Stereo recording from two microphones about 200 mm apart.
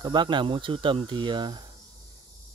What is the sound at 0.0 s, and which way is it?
Speech, 20° right (ahead or behind).